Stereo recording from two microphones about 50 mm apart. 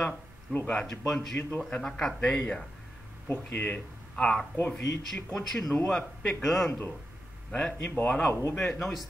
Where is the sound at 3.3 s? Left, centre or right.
Left.